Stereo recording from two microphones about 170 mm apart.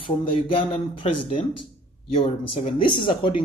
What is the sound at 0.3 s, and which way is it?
Speech, 30° left (ahead or behind).